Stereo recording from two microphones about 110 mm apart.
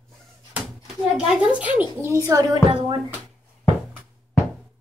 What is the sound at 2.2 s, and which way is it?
Speech, 40° right (ahead or behind).